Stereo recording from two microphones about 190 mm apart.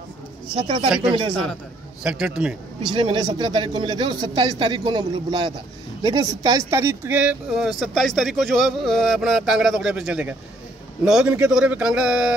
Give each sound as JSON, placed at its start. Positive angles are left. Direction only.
{"t": 0.6, "sound": "speech", "side_deg": -25}
{"t": 0.8, "sound": "speech", "side_deg": -5}
{"t": 2.8, "sound": "speech", "side_deg": -25}